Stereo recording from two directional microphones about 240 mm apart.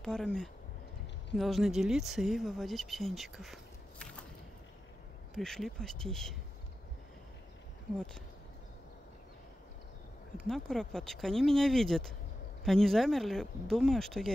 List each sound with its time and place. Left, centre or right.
0.0 s speech: centre
4.0 s a sound: centre
5.3 s speech: centre
10.4 s speech: centre